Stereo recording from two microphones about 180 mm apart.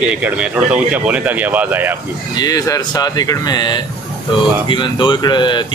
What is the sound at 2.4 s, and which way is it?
Speech, 20° left (ahead or behind).